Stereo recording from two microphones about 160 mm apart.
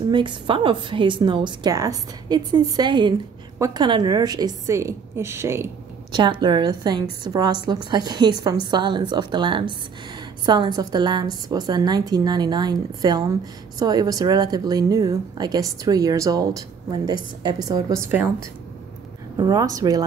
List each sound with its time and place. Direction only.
0.1 s a woman's voice: 30° right (ahead or behind)
6.4 s a woman's voice: 25° right (ahead or behind)